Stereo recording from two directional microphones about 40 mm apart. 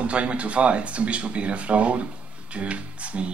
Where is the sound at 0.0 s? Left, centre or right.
Right.